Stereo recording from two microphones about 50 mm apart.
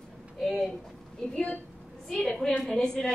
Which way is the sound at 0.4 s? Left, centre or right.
Centre.